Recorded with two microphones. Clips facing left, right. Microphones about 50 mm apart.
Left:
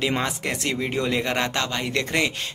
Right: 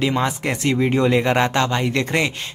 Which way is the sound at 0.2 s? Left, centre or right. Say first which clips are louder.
Right 5 dB; centre.